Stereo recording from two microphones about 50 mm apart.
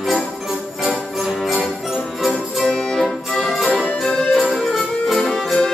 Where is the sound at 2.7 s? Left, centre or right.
Centre.